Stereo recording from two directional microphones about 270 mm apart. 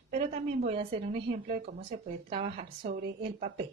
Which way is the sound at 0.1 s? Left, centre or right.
Right.